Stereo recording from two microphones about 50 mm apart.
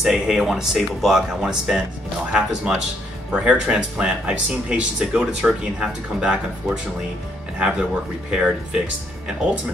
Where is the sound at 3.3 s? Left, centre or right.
Right.